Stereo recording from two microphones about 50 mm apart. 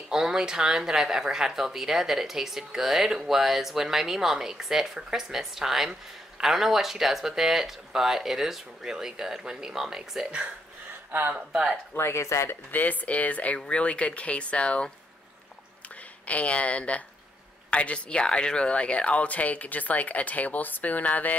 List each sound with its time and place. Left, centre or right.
0.1 s speech: centre
11.1 s speech: right
11.9 s speech: left
12.7 s speech: left
16.3 s speech: left